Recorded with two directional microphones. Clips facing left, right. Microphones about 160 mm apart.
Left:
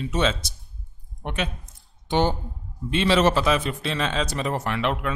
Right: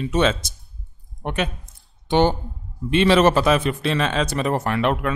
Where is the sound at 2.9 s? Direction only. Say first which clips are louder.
Right 4 dB; 60° right (ahead or behind).